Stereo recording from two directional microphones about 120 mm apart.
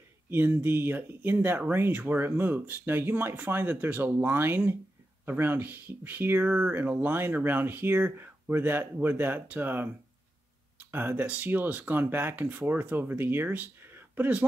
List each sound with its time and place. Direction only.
0.3 s speech: 20° right (ahead or behind)